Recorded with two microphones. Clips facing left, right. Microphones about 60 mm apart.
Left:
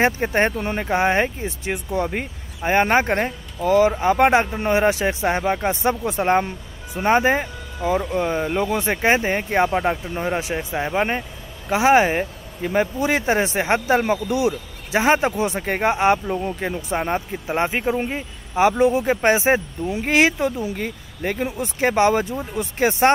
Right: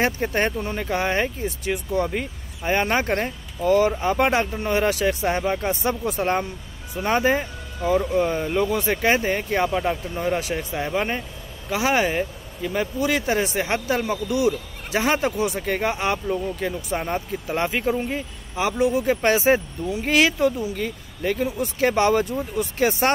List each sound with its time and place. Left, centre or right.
0.0 s speech: left